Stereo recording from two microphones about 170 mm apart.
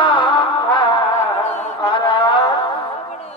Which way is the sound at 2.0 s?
30° left (ahead or behind).